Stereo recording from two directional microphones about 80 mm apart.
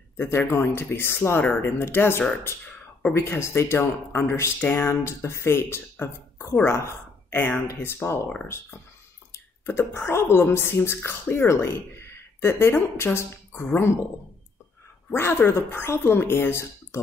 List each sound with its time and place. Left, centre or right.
0.2 s speech: left
9.7 s speech: left
15.0 s speech: left